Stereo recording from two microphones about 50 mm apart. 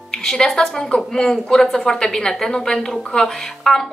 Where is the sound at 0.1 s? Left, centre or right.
Centre.